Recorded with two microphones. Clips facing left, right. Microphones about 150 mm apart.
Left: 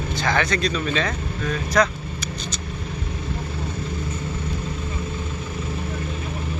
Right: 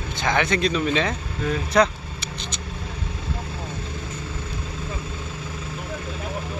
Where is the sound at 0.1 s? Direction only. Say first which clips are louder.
Right 1 dB; 20° right (ahead or behind).